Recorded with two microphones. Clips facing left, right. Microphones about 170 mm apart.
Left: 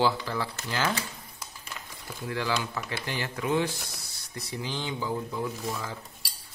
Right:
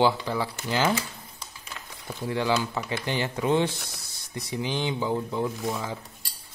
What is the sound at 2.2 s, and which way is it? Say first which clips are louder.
Speech: right 4 dB; 20° right (ahead or behind).